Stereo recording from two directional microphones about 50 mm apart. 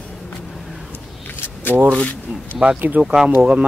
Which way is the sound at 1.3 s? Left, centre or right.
Left.